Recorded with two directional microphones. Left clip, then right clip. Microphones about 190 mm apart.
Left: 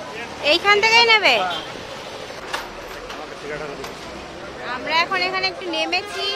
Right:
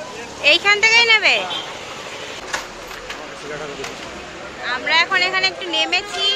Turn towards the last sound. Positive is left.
turn(degrees=5)  # may be behind; listen again after turning